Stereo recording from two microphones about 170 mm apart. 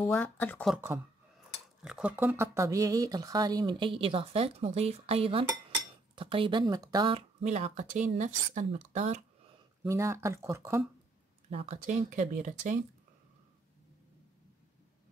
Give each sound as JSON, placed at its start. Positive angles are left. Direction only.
{"t": 0.0, "sound": "speech", "side_deg": 10}
{"t": 0.7, "sound": "speech", "side_deg": -15}
{"t": 1.8, "sound": "speech", "side_deg": -5}
{"t": 9.8, "sound": "speech", "side_deg": -15}
{"t": 11.5, "sound": "speech", "side_deg": -40}